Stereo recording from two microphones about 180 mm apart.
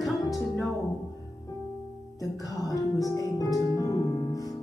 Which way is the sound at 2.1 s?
20° left (ahead or behind).